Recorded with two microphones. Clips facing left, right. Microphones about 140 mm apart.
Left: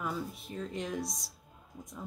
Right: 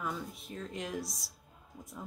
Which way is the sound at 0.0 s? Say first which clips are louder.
Left 2 dB; centre (ahead or behind).